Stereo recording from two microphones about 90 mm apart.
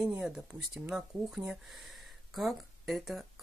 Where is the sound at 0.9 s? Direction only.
10° right (ahead or behind).